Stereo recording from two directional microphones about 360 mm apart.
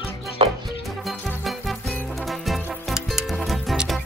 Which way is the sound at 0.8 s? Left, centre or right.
Centre.